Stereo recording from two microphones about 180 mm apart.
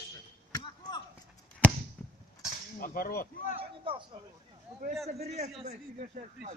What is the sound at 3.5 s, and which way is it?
Speech, 30° right (ahead or behind).